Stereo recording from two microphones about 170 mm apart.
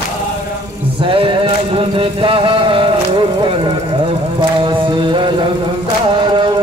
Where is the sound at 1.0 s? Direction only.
30° right (ahead or behind).